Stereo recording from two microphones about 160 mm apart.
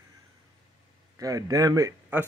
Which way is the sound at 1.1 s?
20° right (ahead or behind).